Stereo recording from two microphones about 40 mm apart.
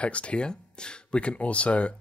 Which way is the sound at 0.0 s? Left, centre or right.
Left.